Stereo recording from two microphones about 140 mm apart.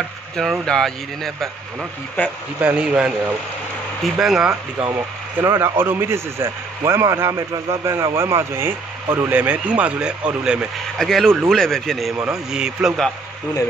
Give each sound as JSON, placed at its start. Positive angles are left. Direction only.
{"t": 0.4, "sound": "speech", "side_deg": 5}
{"t": 2.6, "sound": "speech", "side_deg": -10}
{"t": 4.9, "sound": "speech", "side_deg": -20}